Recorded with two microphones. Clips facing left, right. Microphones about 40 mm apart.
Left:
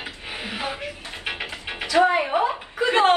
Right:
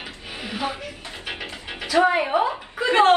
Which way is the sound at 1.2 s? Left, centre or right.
Left.